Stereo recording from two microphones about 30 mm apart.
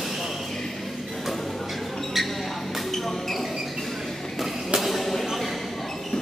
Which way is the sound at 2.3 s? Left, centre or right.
Centre.